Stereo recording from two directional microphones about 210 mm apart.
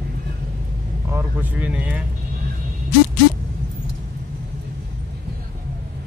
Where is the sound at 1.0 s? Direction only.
10° right (ahead or behind).